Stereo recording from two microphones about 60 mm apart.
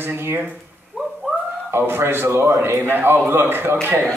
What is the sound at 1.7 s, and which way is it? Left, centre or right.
Speech, right.